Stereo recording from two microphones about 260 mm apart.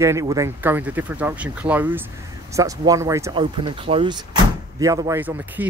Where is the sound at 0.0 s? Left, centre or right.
Centre.